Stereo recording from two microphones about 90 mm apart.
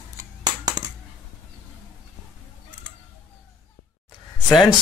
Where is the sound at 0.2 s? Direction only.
45° right (ahead or behind).